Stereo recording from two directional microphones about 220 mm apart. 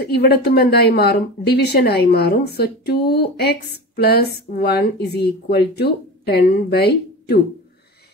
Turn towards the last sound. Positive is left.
turn(degrees=45)  # may be behind; listen again after turning